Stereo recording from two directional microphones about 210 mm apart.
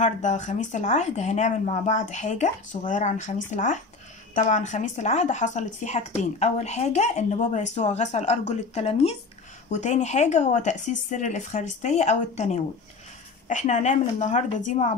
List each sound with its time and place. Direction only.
0.0 s speech: 35° left (ahead or behind)